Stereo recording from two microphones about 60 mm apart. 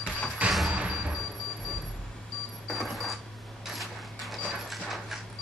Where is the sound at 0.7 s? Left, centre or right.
Centre.